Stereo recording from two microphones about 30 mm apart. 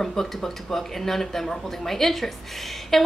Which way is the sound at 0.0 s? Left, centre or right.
Centre.